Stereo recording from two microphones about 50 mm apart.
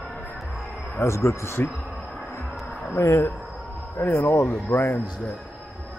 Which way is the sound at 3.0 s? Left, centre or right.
Left.